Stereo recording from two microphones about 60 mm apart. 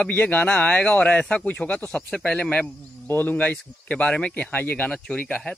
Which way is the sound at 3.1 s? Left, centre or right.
Left.